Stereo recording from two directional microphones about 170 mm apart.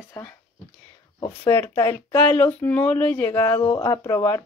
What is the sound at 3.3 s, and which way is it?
Speech, 25° left (ahead or behind).